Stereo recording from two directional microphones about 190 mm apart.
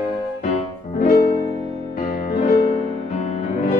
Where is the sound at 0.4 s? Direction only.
40° left (ahead or behind).